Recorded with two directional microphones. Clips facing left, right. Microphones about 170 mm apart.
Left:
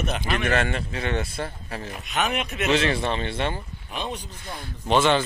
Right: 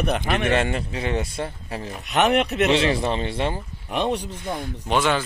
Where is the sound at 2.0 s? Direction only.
65° right (ahead or behind).